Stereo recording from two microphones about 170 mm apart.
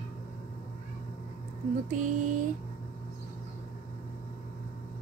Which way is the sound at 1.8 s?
50° right (ahead or behind).